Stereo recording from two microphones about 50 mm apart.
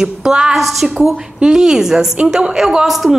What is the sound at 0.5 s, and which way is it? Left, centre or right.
Speech, centre.